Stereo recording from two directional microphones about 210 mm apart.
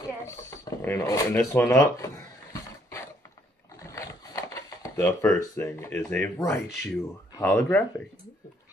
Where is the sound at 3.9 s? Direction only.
15° left (ahead or behind).